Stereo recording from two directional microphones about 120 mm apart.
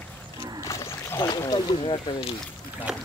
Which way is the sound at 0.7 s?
25° left (ahead or behind).